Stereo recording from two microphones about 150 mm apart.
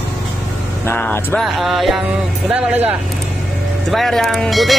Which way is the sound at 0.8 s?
15° left (ahead or behind).